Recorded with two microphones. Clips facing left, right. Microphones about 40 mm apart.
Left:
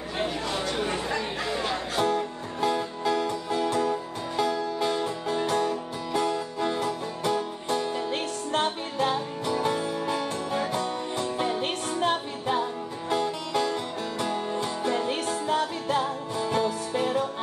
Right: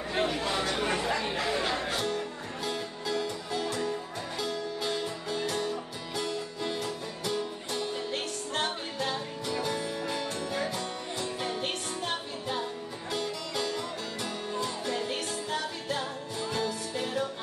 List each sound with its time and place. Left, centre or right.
0.1 s a sound: right
0.9 s chatter: centre
2.0 s music: left
14.6 s music: left